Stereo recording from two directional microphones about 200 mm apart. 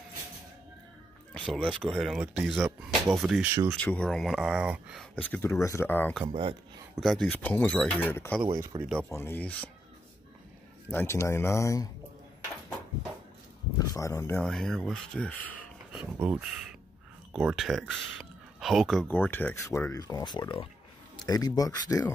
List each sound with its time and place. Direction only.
1.3 s speech: centre (ahead or behind)
5.1 s speech: 10° left (ahead or behind)
6.2 s speech: 25° right (ahead or behind)
7.0 s speech: centre (ahead or behind)
8.7 s speech: 25° right (ahead or behind)
9.1 s speech: 10° left (ahead or behind)
10.9 s speech: 10° left (ahead or behind)
13.7 s speech: 15° left (ahead or behind)